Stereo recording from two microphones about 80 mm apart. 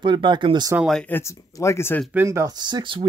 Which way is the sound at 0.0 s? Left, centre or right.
Right.